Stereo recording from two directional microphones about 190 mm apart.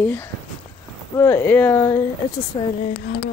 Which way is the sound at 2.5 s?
25° left (ahead or behind).